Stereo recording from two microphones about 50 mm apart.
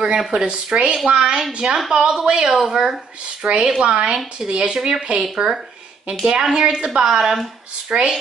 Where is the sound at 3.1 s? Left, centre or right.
Centre.